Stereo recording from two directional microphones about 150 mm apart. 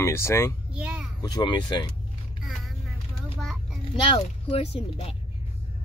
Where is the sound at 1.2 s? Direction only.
30° left (ahead or behind).